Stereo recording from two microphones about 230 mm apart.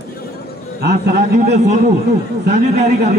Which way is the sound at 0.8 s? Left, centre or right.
Right.